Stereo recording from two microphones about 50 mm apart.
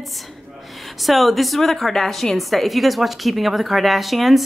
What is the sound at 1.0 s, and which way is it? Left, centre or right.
A woman's voice, centre.